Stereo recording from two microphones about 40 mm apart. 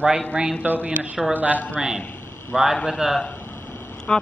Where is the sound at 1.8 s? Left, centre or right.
Centre.